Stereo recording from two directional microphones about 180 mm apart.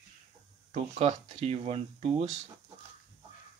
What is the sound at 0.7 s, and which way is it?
Speech, 35° right (ahead or behind).